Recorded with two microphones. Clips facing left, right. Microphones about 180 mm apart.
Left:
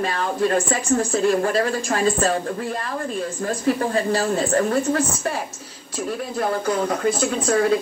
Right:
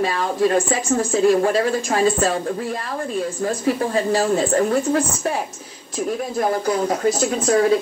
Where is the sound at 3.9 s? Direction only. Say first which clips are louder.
Right 2 dB; 35° right (ahead or behind).